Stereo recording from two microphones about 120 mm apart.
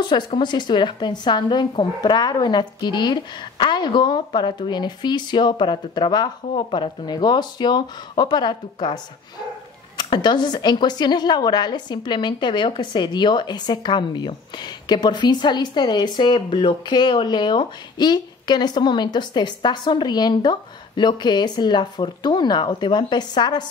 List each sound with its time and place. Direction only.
0.4 s a woman's voice: 40° left (ahead or behind)